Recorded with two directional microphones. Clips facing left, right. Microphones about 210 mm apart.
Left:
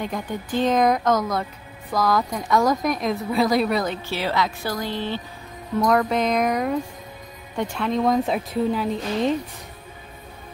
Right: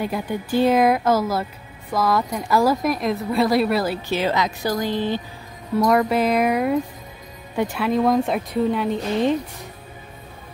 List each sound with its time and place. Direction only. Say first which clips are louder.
0.0 s a woman's voice: right 3 dB; 10° right (ahead or behind)
4.1 s a woman's voice: right 3 dB; 20° right (ahead or behind); by 9.4 s centre (ahead or behind)